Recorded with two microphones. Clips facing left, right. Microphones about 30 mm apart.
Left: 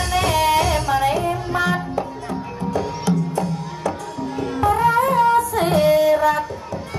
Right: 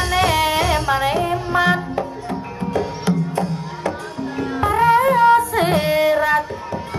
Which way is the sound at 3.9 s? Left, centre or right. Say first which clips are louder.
Even; centre.